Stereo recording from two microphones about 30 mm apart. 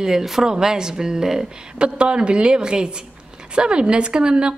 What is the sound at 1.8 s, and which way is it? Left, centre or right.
A woman's voice, right.